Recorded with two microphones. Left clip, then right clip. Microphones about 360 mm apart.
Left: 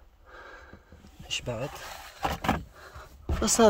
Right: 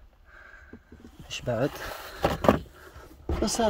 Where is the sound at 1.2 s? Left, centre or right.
Centre.